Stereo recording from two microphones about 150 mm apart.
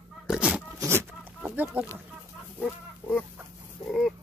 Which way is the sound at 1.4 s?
5° right (ahead or behind).